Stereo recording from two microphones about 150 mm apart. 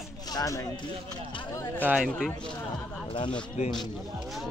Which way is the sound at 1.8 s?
5° right (ahead or behind).